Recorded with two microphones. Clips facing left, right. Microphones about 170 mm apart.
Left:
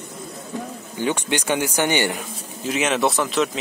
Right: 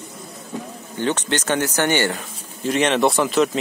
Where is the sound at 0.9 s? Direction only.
10° left (ahead or behind).